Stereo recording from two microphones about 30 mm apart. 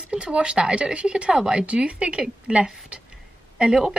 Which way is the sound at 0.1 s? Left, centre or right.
Right.